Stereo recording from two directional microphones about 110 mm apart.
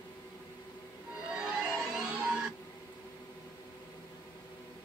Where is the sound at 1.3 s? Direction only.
10° right (ahead or behind).